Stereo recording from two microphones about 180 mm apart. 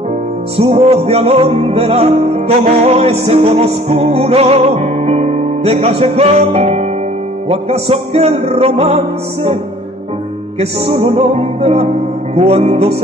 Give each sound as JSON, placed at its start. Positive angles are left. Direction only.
{"t": 0.6, "sound": "music", "side_deg": -35}
{"t": 10.6, "sound": "music", "side_deg": -35}